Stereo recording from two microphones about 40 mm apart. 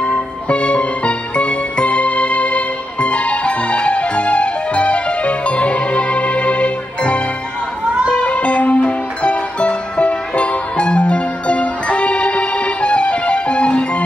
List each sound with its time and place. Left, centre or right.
0.5 s music: left